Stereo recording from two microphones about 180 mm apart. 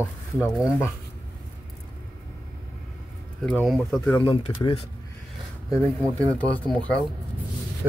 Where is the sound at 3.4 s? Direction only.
5° left (ahead or behind).